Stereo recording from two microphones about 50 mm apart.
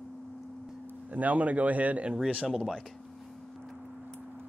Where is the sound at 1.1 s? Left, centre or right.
Right.